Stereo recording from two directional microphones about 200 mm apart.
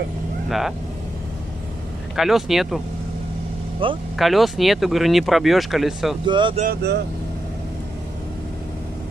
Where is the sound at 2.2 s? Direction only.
Centre (ahead or behind).